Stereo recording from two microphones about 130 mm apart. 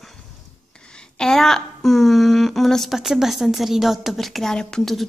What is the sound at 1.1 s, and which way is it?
A woman's voice, 5° left (ahead or behind).